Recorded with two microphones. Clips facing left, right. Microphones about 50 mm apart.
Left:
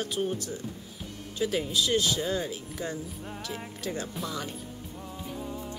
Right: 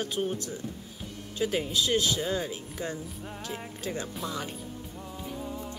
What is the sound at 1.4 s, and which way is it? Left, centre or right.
Speech, centre.